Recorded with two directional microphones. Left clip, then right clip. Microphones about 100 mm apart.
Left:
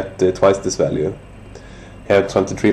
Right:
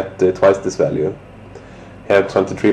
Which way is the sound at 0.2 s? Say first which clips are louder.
Right 1 dB; 35° left (ahead or behind).